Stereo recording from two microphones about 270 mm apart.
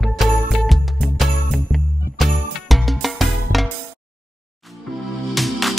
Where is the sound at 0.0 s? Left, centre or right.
Centre.